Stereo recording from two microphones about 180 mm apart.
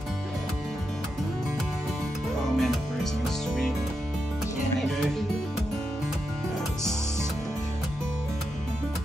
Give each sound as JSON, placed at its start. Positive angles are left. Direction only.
{"t": 2.4, "sound": "music", "side_deg": 0}